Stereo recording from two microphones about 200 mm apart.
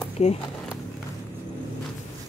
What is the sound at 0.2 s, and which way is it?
Speech, 35° left (ahead or behind).